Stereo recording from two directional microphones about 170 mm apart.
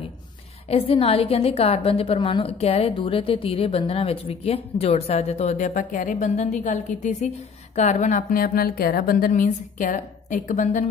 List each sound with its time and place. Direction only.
0.7 s a woman's voice: 35° left (ahead or behind)